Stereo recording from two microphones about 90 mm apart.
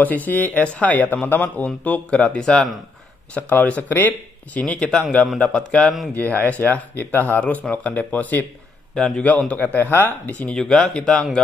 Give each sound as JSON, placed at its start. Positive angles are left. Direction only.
{"t": 0.0, "sound": "speech", "side_deg": 20}
{"t": 8.9, "sound": "speech", "side_deg": 5}